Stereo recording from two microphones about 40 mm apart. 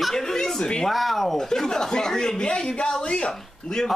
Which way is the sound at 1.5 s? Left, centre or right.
Centre.